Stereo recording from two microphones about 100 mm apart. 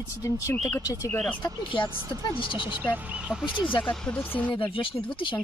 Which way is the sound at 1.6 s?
55° left (ahead or behind).